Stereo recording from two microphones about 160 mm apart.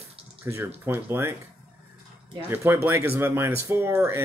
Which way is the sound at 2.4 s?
15° right (ahead or behind).